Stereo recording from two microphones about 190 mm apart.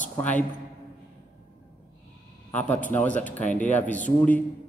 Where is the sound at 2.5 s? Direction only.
10° left (ahead or behind).